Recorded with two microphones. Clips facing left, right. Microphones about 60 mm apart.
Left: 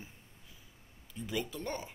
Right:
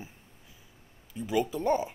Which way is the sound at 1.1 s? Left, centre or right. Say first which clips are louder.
Right 9 dB; centre.